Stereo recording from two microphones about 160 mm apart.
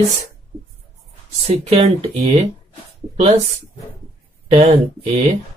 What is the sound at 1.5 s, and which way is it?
Speech, 40° right (ahead or behind).